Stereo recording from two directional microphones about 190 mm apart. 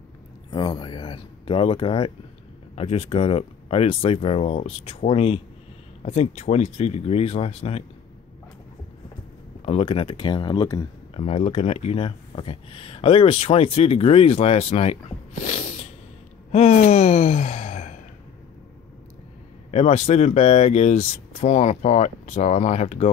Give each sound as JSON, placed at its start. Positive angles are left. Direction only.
{"t": 0.5, "sound": "speech", "side_deg": 20}
{"t": 9.7, "sound": "speech", "side_deg": 30}
{"t": 11.1, "sound": "speech", "side_deg": 30}
{"t": 16.5, "sound": "gasp", "side_deg": 35}
{"t": 19.7, "sound": "speech", "side_deg": 30}